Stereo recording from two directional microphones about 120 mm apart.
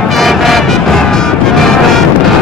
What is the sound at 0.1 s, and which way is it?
Music, centre (ahead or behind).